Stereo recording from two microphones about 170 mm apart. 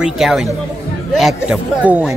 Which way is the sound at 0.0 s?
Centre (ahead or behind).